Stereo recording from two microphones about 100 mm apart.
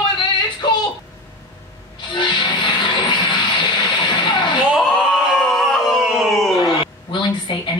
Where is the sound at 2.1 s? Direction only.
50° left (ahead or behind).